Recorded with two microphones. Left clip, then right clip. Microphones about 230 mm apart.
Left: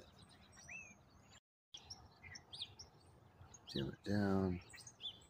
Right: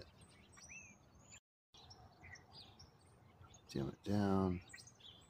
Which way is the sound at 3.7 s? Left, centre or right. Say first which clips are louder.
Even; centre.